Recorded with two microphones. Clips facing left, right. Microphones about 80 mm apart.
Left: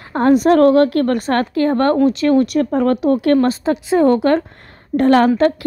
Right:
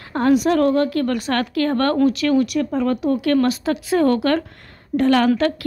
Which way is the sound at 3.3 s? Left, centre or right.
Left.